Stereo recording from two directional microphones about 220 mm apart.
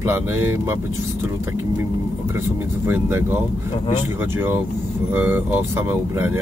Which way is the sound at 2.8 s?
10° right (ahead or behind).